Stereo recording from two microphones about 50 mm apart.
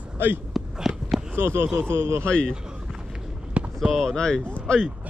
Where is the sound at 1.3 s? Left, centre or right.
Right.